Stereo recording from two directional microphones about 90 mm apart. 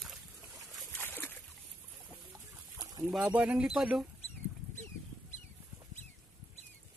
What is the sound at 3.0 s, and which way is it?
Speech, 10° right (ahead or behind).